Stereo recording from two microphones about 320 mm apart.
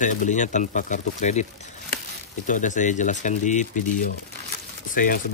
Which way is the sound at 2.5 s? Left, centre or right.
Left.